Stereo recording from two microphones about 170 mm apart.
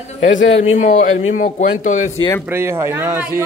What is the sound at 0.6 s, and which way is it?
A man's voice, 45° left (ahead or behind).